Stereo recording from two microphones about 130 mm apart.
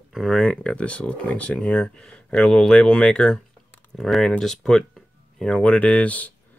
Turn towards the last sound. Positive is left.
turn(degrees=10)  # may be behind; listen again after turning